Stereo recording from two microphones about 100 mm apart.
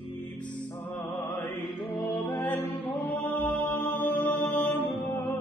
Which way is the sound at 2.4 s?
20° left (ahead or behind).